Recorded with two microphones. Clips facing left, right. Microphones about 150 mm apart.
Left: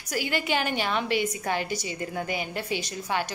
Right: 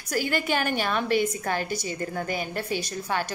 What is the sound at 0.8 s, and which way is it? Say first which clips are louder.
A woman's voice: right 2 dB; 20° left (ahead or behind).